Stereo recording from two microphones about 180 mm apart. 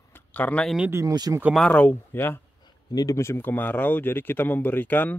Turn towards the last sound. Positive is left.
turn(degrees=10)  # may be behind; listen again after turning